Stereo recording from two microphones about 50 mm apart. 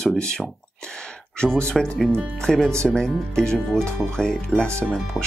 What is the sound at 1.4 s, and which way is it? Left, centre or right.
Speech, centre.